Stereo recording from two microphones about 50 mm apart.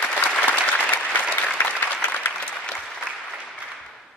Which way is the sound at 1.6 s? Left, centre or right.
Left.